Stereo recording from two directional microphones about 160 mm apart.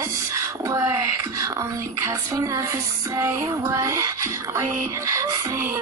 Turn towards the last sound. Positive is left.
turn(degrees=-15)  # may be behind; listen again after turning